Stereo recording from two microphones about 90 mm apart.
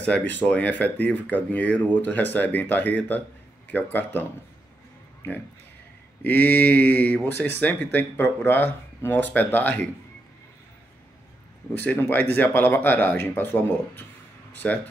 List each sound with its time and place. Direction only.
0.0 s speech: 15° left (ahead or behind)
6.2 s speech: 20° left (ahead or behind)
11.7 s speech: 20° left (ahead or behind)